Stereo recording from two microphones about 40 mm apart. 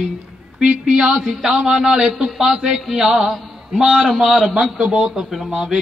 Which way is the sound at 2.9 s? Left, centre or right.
Centre.